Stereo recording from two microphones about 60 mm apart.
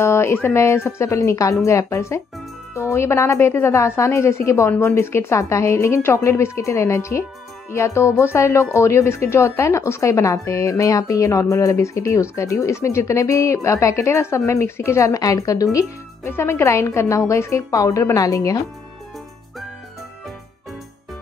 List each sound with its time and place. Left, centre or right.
0.0 s speech: left
0.6 s a woman's voice: left
16.3 s a woman's voice: left
17.6 s speech: left